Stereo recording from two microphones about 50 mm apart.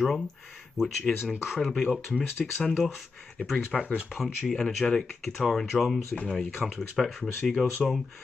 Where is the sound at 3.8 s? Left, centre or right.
Right.